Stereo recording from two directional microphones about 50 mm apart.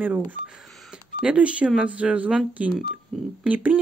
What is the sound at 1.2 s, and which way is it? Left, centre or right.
Speech, right.